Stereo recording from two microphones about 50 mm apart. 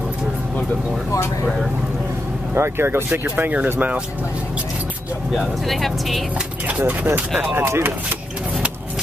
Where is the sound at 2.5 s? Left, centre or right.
Right.